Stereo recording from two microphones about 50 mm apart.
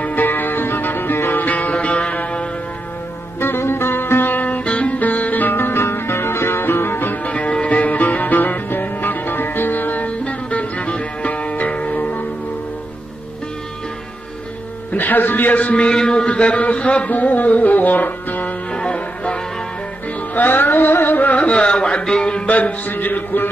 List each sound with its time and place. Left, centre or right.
0.0 s music: left
3.3 s music: left
7.2 s music: left
14.9 s a sound: left
18.7 s music: left
20.3 s music: left; by 22.4 s centre
22.5 s music: left